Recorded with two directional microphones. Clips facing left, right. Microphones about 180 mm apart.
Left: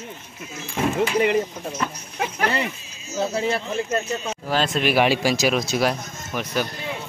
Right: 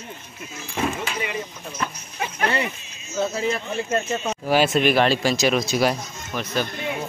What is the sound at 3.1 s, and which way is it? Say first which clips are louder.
Speech: left 1 dB; 35° left (ahead or behind).